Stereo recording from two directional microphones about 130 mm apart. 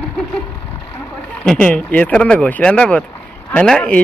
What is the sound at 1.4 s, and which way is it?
Speech, 5° left (ahead or behind).